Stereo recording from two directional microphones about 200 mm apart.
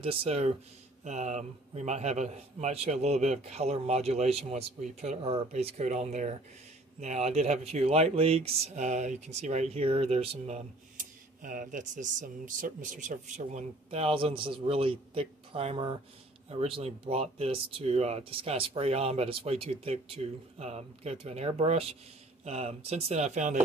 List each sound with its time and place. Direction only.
0.0 s speech: 30° right (ahead or behind)